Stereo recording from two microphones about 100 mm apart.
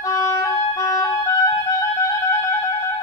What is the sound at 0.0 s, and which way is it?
Clarinet, 30° left (ahead or behind).